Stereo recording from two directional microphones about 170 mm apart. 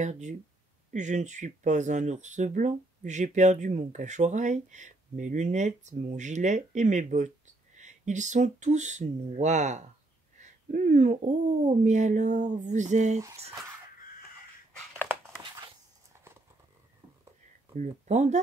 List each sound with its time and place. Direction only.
0.0 s speech: 45° right (ahead or behind)
15.4 s a sound: 30° right (ahead or behind)
17.7 s speech: 40° right (ahead or behind)